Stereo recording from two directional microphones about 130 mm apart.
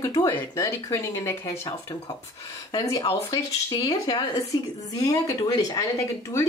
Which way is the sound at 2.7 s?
30° left (ahead or behind).